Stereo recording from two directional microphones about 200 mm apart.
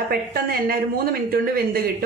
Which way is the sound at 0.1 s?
50° right (ahead or behind).